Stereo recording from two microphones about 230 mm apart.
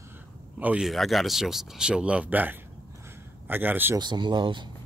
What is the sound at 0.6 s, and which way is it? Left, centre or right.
Speech, centre.